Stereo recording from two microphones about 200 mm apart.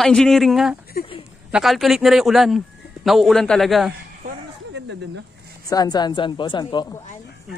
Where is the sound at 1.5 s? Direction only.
Centre (ahead or behind).